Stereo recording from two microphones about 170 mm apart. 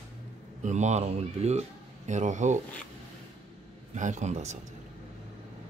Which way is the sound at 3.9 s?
45° right (ahead or behind).